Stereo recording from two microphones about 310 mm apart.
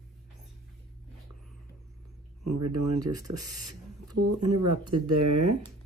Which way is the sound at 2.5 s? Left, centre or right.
Right.